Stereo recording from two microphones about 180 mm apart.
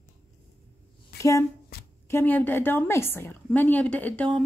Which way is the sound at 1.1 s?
65° left (ahead or behind).